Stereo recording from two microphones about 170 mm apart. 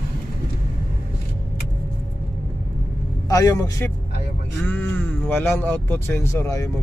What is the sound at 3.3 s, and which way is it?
A man's voice, 20° left (ahead or behind).